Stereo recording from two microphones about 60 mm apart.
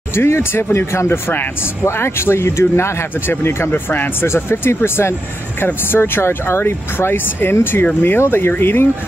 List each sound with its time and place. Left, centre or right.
0.1 s speech: left